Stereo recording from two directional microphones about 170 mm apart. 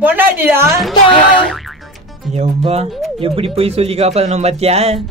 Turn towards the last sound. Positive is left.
turn(degrees=-35)  # may be behind; listen again after turning